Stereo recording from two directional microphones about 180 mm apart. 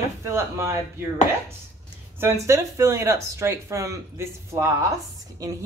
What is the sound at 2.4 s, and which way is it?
A woman's voice, 15° right (ahead or behind).